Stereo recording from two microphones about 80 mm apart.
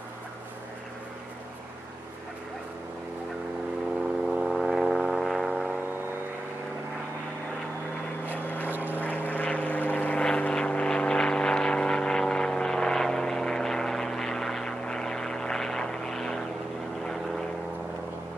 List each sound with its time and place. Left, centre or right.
4.4 s a sound: centre
8.6 s vehicle: right
9.0 s vehicle: left